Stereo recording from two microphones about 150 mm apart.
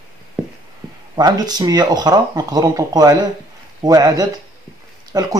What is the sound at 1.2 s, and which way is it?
Speech, 25° right (ahead or behind).